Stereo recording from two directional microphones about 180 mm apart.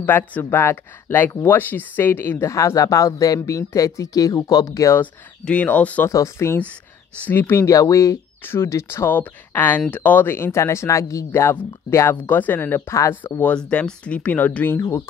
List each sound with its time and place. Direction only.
0.0 s speech: 10° left (ahead or behind)
5.5 s speech: 10° left (ahead or behind)